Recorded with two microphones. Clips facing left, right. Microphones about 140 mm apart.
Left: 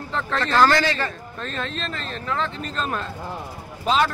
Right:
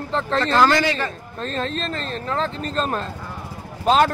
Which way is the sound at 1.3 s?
35° right (ahead or behind).